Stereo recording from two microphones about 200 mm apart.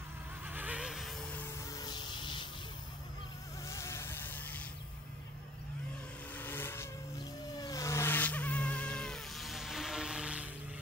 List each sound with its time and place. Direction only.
0.5 s music: 10° right (ahead or behind)
1.8 s music: 20° left (ahead or behind)
3.6 s a sound: 15° left (ahead or behind)
6.3 s vehicle: 10° left (ahead or behind); by 10.5 s 5° right (ahead or behind)